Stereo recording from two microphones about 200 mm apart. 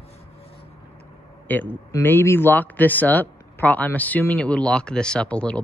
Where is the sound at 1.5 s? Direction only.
10° left (ahead or behind).